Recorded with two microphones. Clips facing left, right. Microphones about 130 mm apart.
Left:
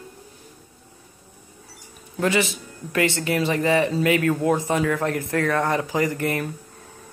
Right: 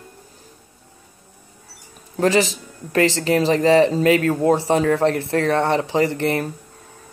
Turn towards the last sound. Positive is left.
turn(degrees=-35)  # may be behind; listen again after turning